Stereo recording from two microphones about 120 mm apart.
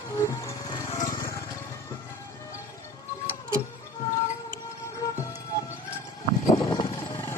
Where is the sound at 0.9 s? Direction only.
30° left (ahead or behind).